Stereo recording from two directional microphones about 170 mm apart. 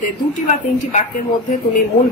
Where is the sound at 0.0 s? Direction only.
45° left (ahead or behind).